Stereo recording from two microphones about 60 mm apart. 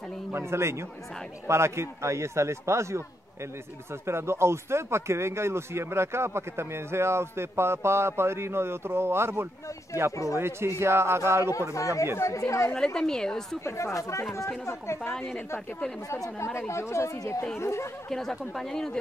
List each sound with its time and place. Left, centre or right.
0.3 s speech: right
4.0 s speech: right
11.7 s speech: left
12.7 s a woman's voice: centre
13.7 s speech: left
16.3 s speech: left
18.1 s a woman's voice: centre